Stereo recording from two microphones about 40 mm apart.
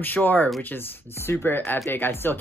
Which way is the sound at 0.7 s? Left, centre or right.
Left.